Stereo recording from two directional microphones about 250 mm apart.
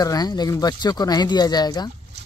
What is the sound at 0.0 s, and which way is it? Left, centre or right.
Speech, centre.